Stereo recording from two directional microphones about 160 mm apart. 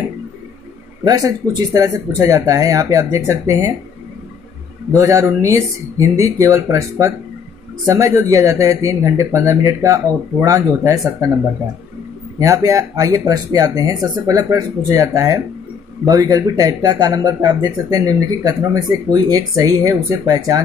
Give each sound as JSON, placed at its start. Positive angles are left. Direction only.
{"t": 1.0, "sound": "speech", "side_deg": -20}
{"t": 4.9, "sound": "speech", "side_deg": -20}
{"t": 12.4, "sound": "speech", "side_deg": -20}